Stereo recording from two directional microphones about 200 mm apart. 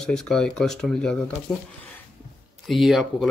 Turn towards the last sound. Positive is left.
turn(degrees=0)  # may be behind; listen again after turning